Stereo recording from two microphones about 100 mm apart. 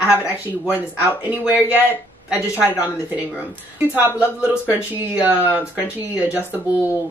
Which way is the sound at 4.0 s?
15° right (ahead or behind).